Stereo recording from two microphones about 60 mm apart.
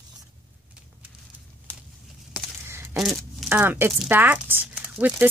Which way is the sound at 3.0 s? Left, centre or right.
Centre.